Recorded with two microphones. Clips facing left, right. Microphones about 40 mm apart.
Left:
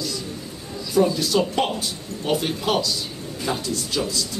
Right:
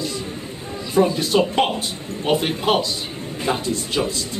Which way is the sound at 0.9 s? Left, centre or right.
Right.